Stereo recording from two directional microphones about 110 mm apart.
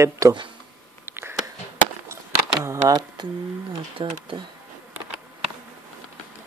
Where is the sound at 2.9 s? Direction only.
40° right (ahead or behind).